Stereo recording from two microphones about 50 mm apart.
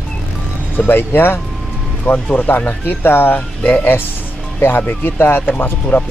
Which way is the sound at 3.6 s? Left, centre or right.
Left.